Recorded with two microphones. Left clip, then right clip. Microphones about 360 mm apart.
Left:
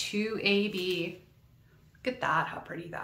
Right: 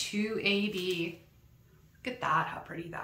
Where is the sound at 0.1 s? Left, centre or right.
Centre.